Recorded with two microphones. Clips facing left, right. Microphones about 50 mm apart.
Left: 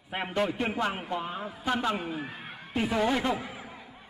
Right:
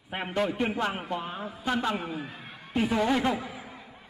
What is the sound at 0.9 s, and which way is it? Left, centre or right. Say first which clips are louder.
Speech: right 1 dB; right.